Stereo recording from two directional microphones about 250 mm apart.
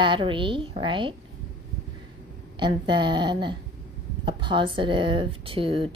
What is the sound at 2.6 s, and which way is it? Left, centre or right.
A woman's voice, centre.